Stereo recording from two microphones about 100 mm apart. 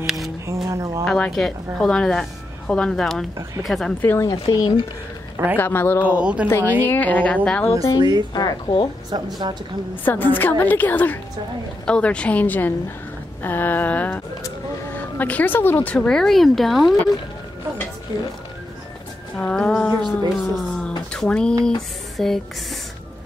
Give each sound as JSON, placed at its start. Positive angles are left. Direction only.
{"t": 0.0, "sound": "a woman's voice", "side_deg": 0}
{"t": 0.5, "sound": "music", "side_deg": -30}
{"t": 1.0, "sound": "a woman's voice", "side_deg": 5}
{"t": 4.0, "sound": "a woman's voice", "side_deg": 20}
{"t": 4.5, "sound": "speech", "side_deg": 50}
{"t": 5.6, "sound": "a woman's voice", "side_deg": 20}
{"t": 6.0, "sound": "speech", "side_deg": -15}
{"t": 6.8, "sound": "speech", "side_deg": 15}
{"t": 8.3, "sound": "speech", "side_deg": 45}
{"t": 9.1, "sound": "speech", "side_deg": -45}
{"t": 10.0, "sound": "a woman's voice", "side_deg": 20}
{"t": 18.1, "sound": "speech", "side_deg": 45}
{"t": 19.3, "sound": "speech", "side_deg": 5}